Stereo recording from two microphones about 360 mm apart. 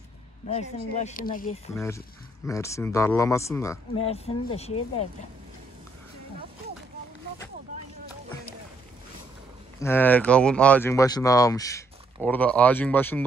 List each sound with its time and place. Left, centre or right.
0.5 s speech: centre
1.8 s speech: centre
9.8 s speech: centre